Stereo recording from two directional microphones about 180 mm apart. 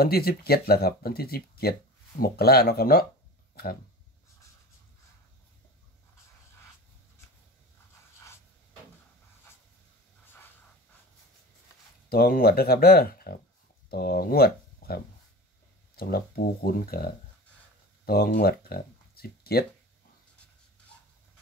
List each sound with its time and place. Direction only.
0.0 s speech: 60° left (ahead or behind)
12.1 s speech: 55° left (ahead or behind)
16.0 s speech: 55° left (ahead or behind)